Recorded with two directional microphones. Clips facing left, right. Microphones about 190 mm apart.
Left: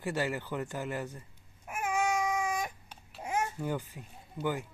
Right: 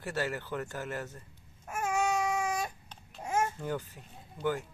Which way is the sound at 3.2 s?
15° left (ahead or behind).